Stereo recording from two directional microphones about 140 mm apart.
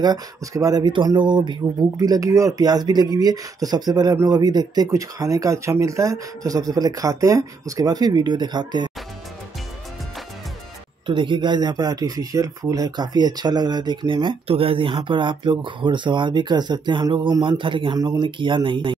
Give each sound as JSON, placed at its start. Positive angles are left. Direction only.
{"t": 0.0, "sound": "speech", "side_deg": -25}
{"t": 11.1, "sound": "speech", "side_deg": -35}